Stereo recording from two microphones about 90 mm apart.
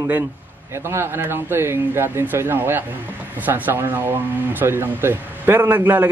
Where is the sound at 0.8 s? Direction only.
25° right (ahead or behind).